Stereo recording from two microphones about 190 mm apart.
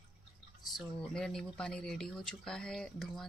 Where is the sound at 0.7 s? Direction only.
Centre (ahead or behind).